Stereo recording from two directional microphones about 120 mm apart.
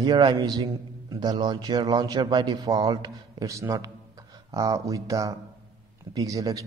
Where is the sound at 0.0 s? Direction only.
35° right (ahead or behind).